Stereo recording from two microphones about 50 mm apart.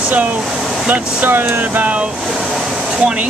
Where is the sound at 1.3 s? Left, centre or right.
Right.